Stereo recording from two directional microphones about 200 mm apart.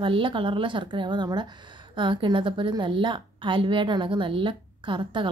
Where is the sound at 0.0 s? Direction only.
25° right (ahead or behind).